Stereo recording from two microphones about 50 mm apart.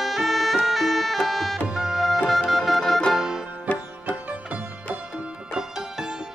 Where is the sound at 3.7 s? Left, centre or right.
Left.